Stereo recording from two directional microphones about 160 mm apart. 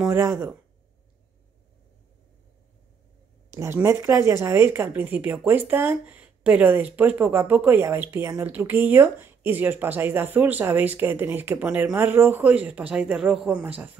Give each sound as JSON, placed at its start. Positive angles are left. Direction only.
{"t": 0.1, "sound": "speech", "side_deg": -15}
{"t": 3.5, "sound": "speech", "side_deg": -15}